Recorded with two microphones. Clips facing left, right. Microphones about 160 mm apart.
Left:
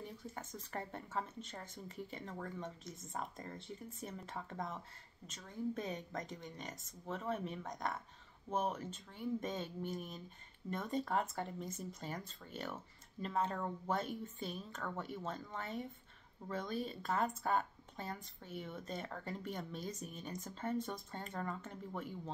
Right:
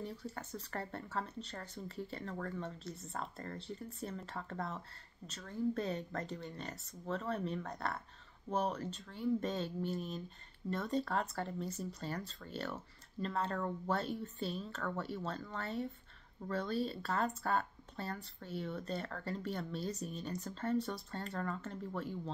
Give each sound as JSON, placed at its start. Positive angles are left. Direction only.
{"t": 0.0, "sound": "speech", "side_deg": 20}